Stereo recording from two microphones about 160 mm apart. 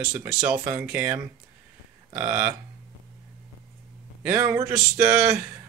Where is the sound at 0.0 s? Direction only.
10° right (ahead or behind).